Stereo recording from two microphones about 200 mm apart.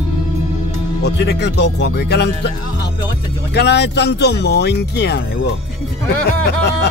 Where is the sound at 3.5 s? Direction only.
55° left (ahead or behind).